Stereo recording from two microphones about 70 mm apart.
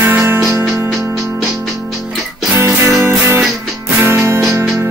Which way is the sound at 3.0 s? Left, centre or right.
Right.